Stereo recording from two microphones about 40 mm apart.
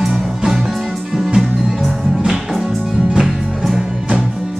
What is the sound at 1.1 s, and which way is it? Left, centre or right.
Music, centre.